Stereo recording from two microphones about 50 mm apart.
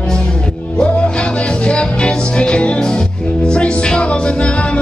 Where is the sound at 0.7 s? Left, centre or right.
Left.